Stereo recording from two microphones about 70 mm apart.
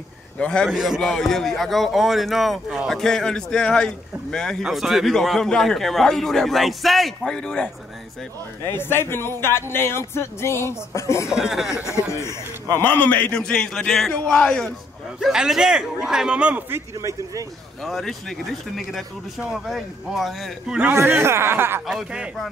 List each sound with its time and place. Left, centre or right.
0.4 s a man's voice: centre
0.7 s a man's voice: centre
4.6 s a man's voice: centre
8.6 s speech: left
11.2 s a man's voice: centre
11.7 s speech: left
12.7 s a man's voice: left
13.4 s a man's voice: centre
15.1 s a man's voice: centre
17.0 s speech: right
17.8 s a man's voice: centre
19.7 s a man's voice: centre
20.9 s speech: right
21.8 s a man's voice: centre